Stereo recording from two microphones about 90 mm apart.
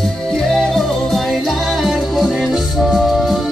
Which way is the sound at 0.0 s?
5° left (ahead or behind).